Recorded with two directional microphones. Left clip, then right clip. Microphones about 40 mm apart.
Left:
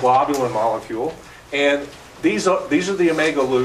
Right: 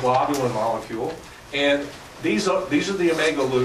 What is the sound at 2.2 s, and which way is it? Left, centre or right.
Speech, left.